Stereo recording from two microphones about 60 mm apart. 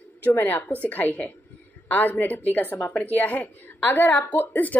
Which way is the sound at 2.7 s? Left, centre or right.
Left.